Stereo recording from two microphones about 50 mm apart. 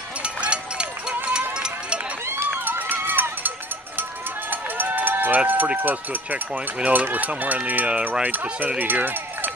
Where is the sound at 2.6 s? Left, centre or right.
Right.